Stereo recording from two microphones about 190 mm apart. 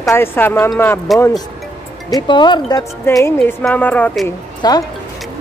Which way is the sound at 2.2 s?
25° left (ahead or behind).